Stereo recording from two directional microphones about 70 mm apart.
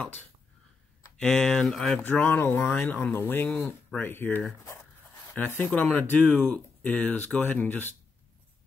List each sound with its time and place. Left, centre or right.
1.2 s speech: centre
2.0 s speech: left